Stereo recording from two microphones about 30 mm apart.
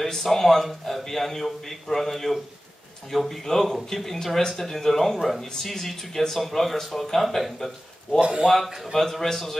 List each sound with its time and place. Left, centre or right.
0.0 s speech: centre
8.2 s speech: right
8.9 s speech: centre